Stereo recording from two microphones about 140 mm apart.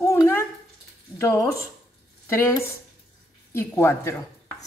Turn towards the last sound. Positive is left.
turn(degrees=20)  # may be behind; listen again after turning